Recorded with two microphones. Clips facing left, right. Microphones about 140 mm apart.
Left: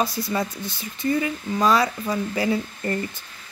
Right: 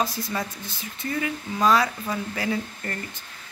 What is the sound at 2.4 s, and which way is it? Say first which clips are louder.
Speech: left 4 dB; 15° left (ahead or behind).